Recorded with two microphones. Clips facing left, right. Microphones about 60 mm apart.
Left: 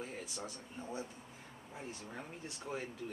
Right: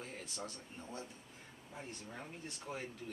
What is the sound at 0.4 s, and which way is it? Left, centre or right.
Speech, centre.